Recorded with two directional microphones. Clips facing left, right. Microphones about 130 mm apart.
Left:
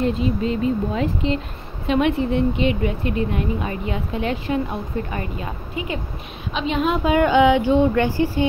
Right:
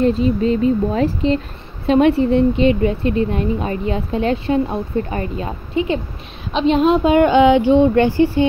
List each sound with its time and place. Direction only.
0.0 s speech: 35° right (ahead or behind)